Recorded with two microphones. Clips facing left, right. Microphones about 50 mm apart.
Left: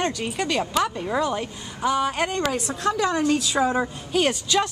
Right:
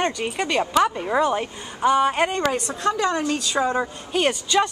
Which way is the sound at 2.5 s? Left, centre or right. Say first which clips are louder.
Right 1 dB; centre.